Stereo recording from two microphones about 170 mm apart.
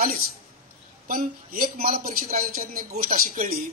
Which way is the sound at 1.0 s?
55° right (ahead or behind).